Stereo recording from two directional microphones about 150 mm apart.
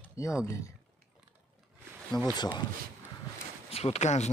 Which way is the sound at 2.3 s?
30° left (ahead or behind).